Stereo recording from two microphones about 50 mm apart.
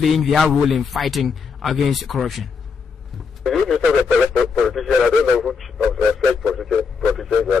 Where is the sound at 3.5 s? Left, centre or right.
Centre.